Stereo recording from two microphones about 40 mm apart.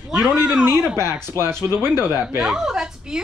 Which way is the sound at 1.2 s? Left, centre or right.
Right.